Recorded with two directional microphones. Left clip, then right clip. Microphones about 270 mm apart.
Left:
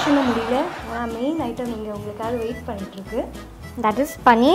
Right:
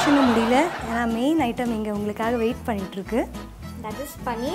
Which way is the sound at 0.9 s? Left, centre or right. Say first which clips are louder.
Right 2 dB; right.